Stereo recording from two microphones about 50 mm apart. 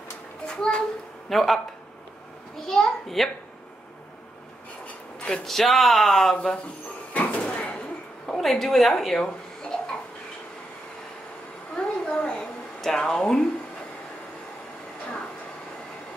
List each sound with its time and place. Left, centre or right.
0.6 s speech: centre
1.3 s speech: centre
2.6 s speech: centre
5.2 s speech: centre
6.3 s speech: left
7.2 s a sound: left
8.3 s speech: centre
11.7 s a sound: left
12.4 s a sound: centre